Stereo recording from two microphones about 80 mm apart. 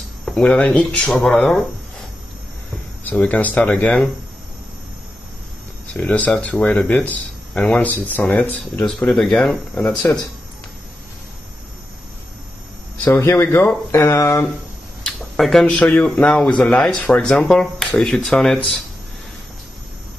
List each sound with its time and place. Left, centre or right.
0.3 s speech: centre
3.2 s speech: centre
5.9 s speech: centre
9.1 s speech: centre
13.0 s speech: left
15.0 s a sound: centre
15.6 s speech: centre